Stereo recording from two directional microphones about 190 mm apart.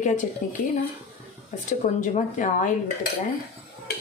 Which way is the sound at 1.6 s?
40° left (ahead or behind).